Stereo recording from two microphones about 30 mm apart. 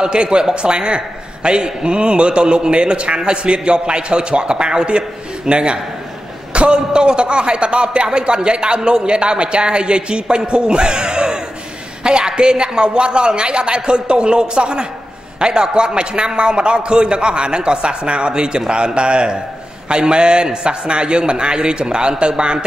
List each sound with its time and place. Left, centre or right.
0.0 s a man's voice: right